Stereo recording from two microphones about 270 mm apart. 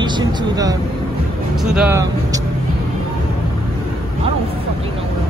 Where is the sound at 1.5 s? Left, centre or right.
Centre.